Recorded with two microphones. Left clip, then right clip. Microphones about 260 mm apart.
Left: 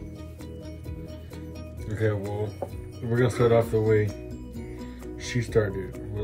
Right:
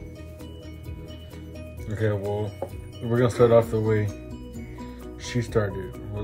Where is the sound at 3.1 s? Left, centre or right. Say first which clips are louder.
Right 3 dB; centre.